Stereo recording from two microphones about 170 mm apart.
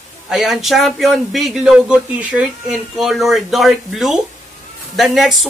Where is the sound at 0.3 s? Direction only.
5° right (ahead or behind).